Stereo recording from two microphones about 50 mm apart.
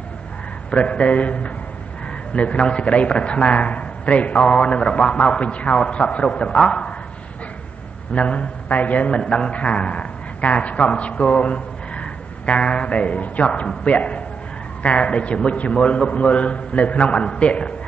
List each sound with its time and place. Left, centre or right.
0.7 s a man's voice: left
8.1 s a man's voice: left